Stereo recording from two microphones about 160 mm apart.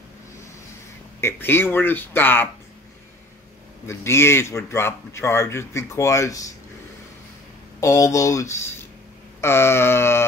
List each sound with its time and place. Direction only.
1.2 s speech: 15° left (ahead or behind)
3.8 s speech: 15° left (ahead or behind)
7.8 s speech: 20° left (ahead or behind)